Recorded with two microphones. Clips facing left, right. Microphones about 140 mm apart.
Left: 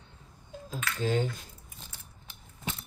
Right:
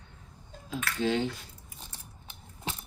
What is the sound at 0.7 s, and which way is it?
Speech, 40° left (ahead or behind).